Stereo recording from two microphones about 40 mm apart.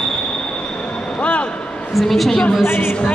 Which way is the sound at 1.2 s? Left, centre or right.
Left.